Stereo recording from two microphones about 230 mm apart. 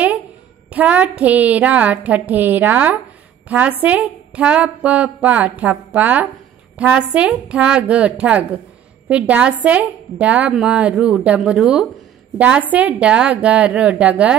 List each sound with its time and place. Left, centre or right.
0.7 s a woman's voice: centre